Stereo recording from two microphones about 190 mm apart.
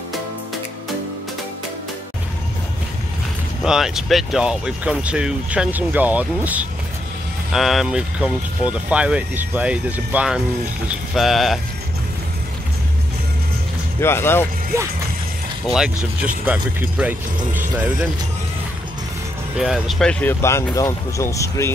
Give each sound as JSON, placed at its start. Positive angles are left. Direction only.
{"t": 3.6, "sound": "speech", "side_deg": -5}
{"t": 14.0, "sound": "speech", "side_deg": 10}
{"t": 14.7, "sound": "speech", "side_deg": -15}
{"t": 16.4, "sound": "speech", "side_deg": -10}
{"t": 19.6, "sound": "speech", "side_deg": 0}